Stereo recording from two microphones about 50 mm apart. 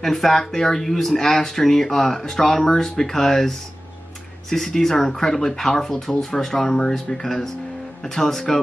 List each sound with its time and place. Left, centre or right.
0.0 s speech: centre